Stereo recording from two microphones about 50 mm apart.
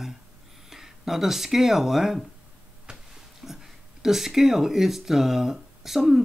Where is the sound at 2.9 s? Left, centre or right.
Centre.